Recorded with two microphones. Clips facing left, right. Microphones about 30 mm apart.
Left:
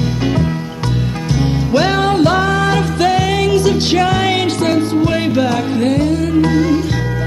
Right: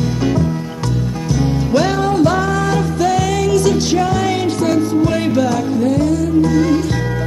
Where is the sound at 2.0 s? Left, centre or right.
Left.